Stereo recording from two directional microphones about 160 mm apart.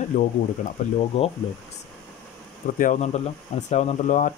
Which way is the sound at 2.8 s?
50° left (ahead or behind).